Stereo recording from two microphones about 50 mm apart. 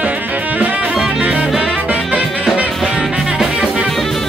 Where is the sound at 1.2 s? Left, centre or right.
Centre.